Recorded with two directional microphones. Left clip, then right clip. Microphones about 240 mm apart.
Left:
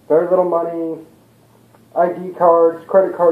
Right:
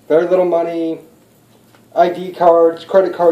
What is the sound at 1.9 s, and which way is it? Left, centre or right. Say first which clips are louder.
Speech: right 3 dB; right.